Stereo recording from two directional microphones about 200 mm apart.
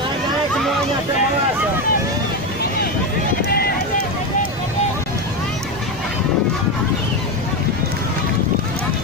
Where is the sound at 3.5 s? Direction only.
50° left (ahead or behind).